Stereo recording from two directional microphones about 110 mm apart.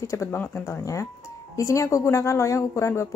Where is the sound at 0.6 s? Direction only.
30° left (ahead or behind).